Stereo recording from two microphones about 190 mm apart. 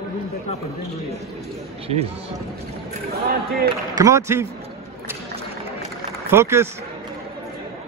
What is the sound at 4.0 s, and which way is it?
Speech, 15° right (ahead or behind).